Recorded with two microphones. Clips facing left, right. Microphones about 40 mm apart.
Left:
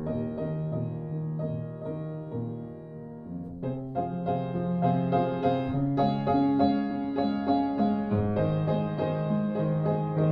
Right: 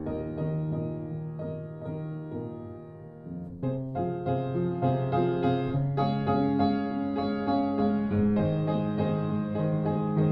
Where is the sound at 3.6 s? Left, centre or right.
Centre.